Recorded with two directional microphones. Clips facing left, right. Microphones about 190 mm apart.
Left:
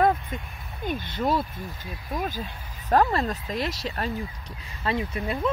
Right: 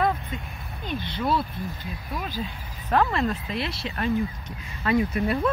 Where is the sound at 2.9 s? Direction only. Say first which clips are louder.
Left 1 dB; 40° left (ahead or behind).